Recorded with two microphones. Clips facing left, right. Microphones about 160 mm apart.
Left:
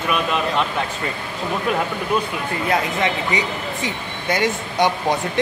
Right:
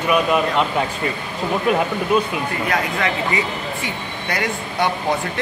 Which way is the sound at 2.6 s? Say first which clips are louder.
Left 3 dB; 25° left (ahead or behind).